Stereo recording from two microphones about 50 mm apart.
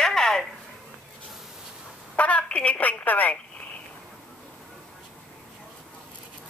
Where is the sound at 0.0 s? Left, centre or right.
Centre.